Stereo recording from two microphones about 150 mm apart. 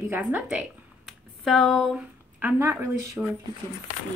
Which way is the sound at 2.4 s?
15° right (ahead or behind).